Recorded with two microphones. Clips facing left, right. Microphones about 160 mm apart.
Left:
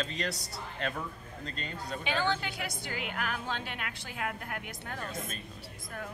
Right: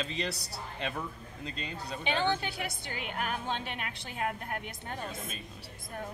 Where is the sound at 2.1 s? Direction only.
20° right (ahead or behind).